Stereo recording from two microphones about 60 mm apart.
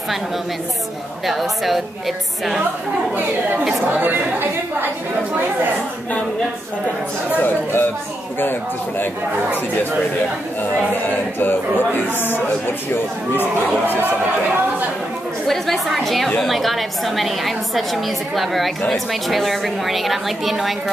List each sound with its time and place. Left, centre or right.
1.2 s a woman's voice: centre
3.8 s a woman's voice: right
7.4 s speech: left
11.3 s speech: left
15.4 s a woman's voice: centre